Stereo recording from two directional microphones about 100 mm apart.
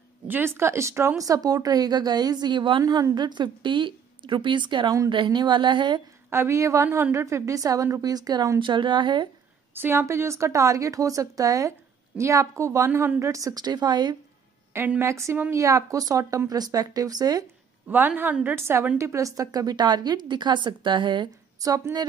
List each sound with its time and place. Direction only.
0.3 s a woman's voice: 25° right (ahead or behind); by 2.8 s 55° right (ahead or behind)
2.8 s a woman's voice: 35° right (ahead or behind)
6.3 s a woman's voice: 25° right (ahead or behind); by 9.3 s 50° right (ahead or behind)
9.8 s a woman's voice: 25° right (ahead or behind); by 14.1 s 45° right (ahead or behind)
14.7 s a woman's voice: 25° right (ahead or behind); by 17.5 s 40° right (ahead or behind)
17.8 s a woman's voice: 20° right (ahead or behind); by 21.3 s 55° right (ahead or behind)
21.5 s a woman's voice: 35° right (ahead or behind)